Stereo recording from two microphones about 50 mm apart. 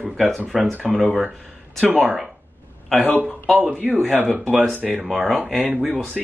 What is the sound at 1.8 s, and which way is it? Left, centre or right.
Speech, right.